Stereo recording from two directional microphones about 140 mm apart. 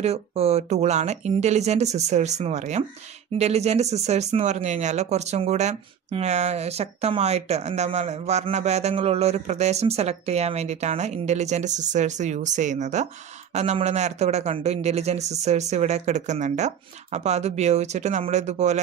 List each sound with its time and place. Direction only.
0.0 s speech: 50° right (ahead or behind)